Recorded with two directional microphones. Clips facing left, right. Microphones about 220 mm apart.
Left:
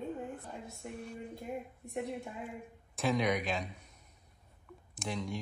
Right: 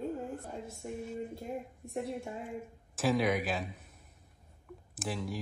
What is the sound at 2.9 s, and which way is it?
Speech, centre (ahead or behind).